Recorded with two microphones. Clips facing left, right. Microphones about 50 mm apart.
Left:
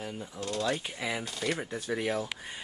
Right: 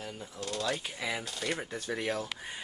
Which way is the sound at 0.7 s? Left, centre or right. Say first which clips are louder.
Left 1 dB; centre.